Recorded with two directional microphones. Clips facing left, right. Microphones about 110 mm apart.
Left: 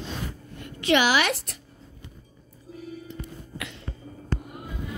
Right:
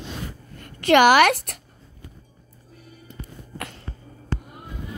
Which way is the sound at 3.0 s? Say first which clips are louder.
Left 2 dB; 45° right (ahead or behind).